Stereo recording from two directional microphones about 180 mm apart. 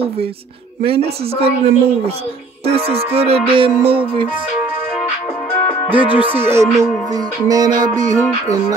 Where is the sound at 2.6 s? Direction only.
35° right (ahead or behind).